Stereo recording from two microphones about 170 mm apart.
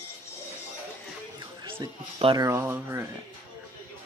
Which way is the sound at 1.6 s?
30° right (ahead or behind).